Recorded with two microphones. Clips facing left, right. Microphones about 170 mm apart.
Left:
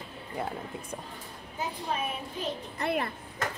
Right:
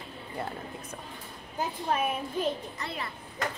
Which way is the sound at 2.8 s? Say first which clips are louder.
Left 10 dB; 55° left (ahead or behind).